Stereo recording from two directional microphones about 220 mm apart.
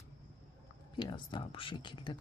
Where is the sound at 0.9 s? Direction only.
20° left (ahead or behind).